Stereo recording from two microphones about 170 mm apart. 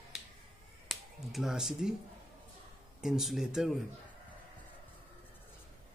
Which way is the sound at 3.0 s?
Centre (ahead or behind).